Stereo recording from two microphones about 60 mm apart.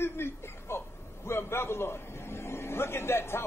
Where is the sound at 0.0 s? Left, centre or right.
Left.